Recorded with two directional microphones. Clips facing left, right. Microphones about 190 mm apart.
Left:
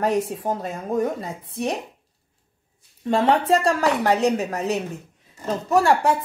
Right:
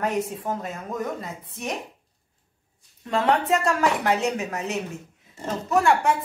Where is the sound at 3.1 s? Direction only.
30° left (ahead or behind).